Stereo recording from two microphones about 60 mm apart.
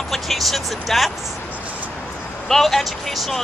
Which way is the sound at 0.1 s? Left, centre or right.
Centre.